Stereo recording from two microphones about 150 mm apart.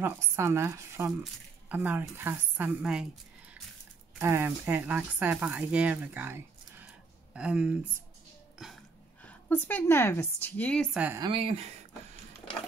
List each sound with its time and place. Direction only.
0.0 s speech: 15° right (ahead or behind)
4.2 s speech: 15° right (ahead or behind)
6.9 s a sound: 5° right (ahead or behind)
8.6 s burping: centre (ahead or behind)
9.2 s a woman's voice: 10° left (ahead or behind)
11.1 s speech: 35° right (ahead or behind)